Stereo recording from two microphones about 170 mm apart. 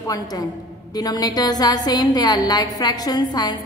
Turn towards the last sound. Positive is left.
turn(degrees=25)  # may be behind; listen again after turning